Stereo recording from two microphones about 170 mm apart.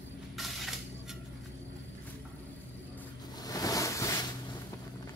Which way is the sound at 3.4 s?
20° left (ahead or behind).